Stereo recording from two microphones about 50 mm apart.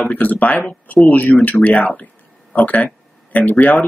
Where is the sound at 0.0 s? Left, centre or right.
Left.